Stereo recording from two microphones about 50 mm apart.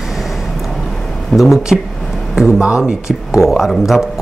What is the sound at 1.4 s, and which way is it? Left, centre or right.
Speech, centre.